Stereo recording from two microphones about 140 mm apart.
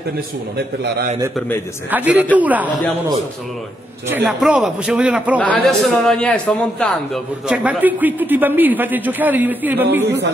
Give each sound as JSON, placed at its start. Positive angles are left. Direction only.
{"t": 1.9, "sound": "a man's voice", "side_deg": -10}
{"t": 4.1, "sound": "a man's voice", "side_deg": -5}
{"t": 5.4, "sound": "a man's voice", "side_deg": 5}
{"t": 7.4, "sound": "a man's voice", "side_deg": -10}